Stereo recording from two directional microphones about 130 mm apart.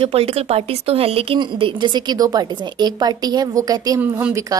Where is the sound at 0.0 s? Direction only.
50° right (ahead or behind); by 4.0 s 30° right (ahead or behind).